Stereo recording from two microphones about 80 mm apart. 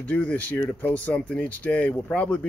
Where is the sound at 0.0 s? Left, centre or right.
Centre.